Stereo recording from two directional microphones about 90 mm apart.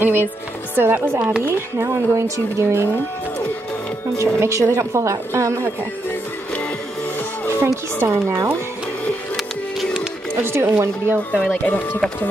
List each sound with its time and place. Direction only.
0.0 s speech: 25° right (ahead or behind)
4.2 s a woman's voice: 30° right (ahead or behind)
7.4 s speech: 30° right (ahead or behind)
10.4 s speech: 25° right (ahead or behind)
11.4 s speech: 20° left (ahead or behind)